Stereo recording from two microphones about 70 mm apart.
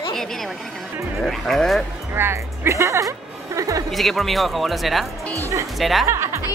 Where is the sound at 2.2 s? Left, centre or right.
Right.